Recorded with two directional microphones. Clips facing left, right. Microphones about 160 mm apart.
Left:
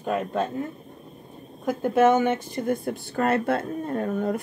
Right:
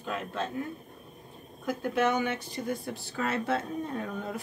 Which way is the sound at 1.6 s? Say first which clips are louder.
Left 8 dB; 50° left (ahead or behind).